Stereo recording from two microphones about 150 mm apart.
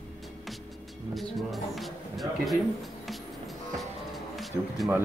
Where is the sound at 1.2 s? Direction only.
Centre (ahead or behind).